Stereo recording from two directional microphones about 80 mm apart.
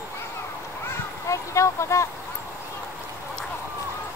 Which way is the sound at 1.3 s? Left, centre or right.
Left.